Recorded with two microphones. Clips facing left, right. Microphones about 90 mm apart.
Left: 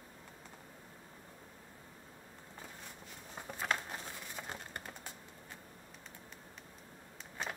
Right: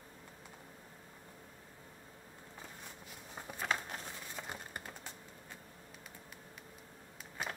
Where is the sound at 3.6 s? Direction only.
Centre (ahead or behind).